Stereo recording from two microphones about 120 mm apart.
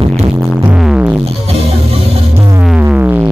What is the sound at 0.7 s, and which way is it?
Music, 5° right (ahead or behind).